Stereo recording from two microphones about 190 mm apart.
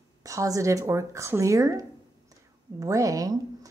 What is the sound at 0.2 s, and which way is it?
Speech, 15° right (ahead or behind).